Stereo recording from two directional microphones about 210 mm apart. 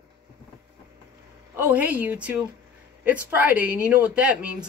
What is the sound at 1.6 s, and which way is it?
A man's voice, 10° right (ahead or behind).